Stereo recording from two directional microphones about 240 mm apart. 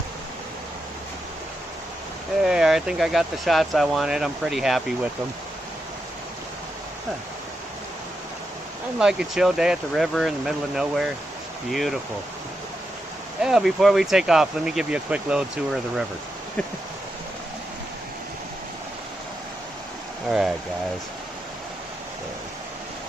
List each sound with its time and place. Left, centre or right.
2.4 s speech: centre
8.9 s speech: centre
13.4 s speech: centre
20.2 s speech: centre